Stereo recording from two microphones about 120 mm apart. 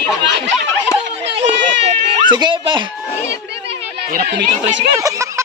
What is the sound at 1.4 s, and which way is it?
Run, 65° right (ahead or behind).